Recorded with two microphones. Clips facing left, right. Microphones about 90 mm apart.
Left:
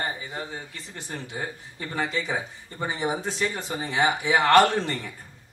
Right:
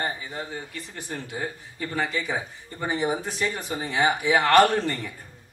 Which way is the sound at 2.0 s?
20° left (ahead or behind).